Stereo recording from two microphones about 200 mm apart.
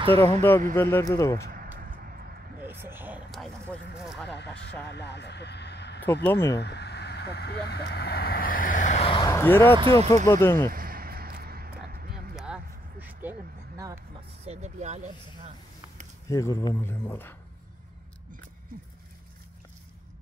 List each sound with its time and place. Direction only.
0.2 s speech: 15° left (ahead or behind)
1.5 s a sound: 45° right (ahead or behind)
2.6 s a sound: 10° right (ahead or behind)
4.4 s vehicle: 60° left (ahead or behind)
4.9 s speech: 60° left (ahead or behind)
6.2 s speech: 10° left (ahead or behind)
6.6 s vehicle: 55° left (ahead or behind); by 9.3 s 25° left (ahead or behind)
9.3 s speech: 10° left (ahead or behind)
9.8 s speech: 25° right (ahead or behind)
10.0 s speech: 15° left (ahead or behind)
10.7 s a sound: 45° right (ahead or behind)
12.4 s vehicle: 5° right (ahead or behind)
14.4 s speech: 35° right (ahead or behind)
16.3 s speech: 15° left (ahead or behind)